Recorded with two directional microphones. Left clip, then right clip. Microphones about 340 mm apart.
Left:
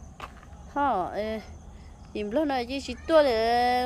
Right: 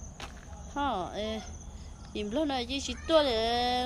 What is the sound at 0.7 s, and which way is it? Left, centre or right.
A woman's voice, centre.